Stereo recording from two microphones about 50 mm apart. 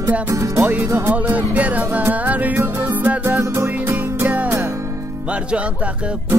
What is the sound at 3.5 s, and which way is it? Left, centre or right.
Music, right.